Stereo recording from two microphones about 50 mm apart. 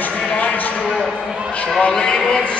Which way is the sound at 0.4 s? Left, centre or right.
Left.